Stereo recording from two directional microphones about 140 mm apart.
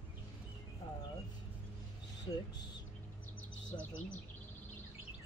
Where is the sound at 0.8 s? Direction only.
40° left (ahead or behind).